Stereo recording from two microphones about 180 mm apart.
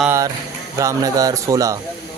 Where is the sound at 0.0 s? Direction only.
15° right (ahead or behind).